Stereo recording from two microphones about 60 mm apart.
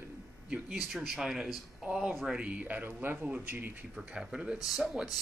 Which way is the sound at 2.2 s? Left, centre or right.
Centre.